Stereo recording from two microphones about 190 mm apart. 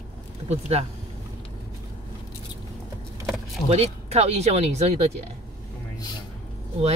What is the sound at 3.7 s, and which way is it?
Speech, 35° right (ahead or behind).